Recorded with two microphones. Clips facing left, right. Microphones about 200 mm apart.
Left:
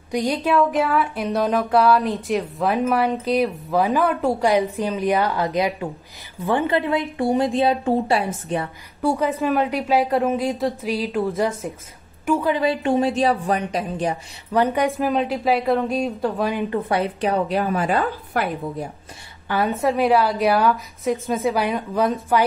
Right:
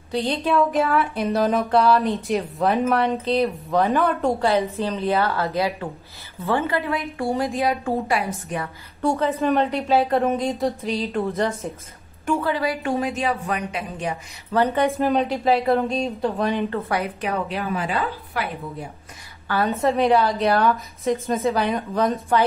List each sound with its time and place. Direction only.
0.1 s speech: 10° left (ahead or behind)
4.4 s a woman's voice: 15° left (ahead or behind)
9.4 s speech: centre (ahead or behind)
12.3 s a woman's voice: 15° left (ahead or behind)
13.0 s a woman's voice: 30° left (ahead or behind)
14.5 s a woman's voice: 15° left (ahead or behind)
14.9 s speech: centre (ahead or behind)
16.9 s a woman's voice: 30° left (ahead or behind); by 18.9 s 50° left (ahead or behind)
19.4 s a woman's voice: 15° left (ahead or behind)
19.8 s speech: 5° left (ahead or behind)